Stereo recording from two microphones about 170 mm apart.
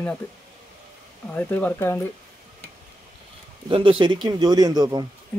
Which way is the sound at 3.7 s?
30° right (ahead or behind).